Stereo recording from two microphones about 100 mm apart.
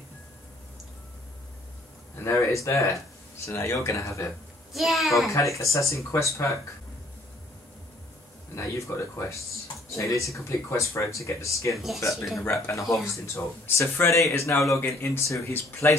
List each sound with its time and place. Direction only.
2.1 s speech: 30° left (ahead or behind)
4.7 s a child's voice: centre (ahead or behind)
5.3 s speech: 30° left (ahead or behind)
8.5 s speech: 30° left (ahead or behind)
11.7 s a child's voice: centre (ahead or behind)
12.4 s speech: 25° left (ahead or behind)
12.8 s a child's voice: centre (ahead or behind)
13.1 s speech: 30° left (ahead or behind)